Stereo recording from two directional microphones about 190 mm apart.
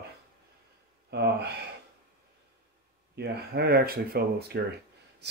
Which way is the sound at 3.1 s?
60° right (ahead or behind).